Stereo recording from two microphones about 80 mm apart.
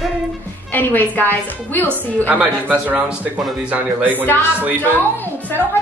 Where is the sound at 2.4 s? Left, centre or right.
Centre.